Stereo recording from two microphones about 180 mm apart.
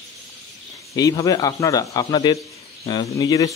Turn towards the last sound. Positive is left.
turn(degrees=20)  # may be behind; listen again after turning